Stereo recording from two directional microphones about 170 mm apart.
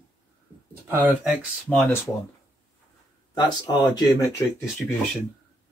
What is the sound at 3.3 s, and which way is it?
Speech, 25° left (ahead or behind).